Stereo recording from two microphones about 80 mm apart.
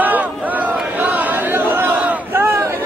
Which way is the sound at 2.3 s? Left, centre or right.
Right.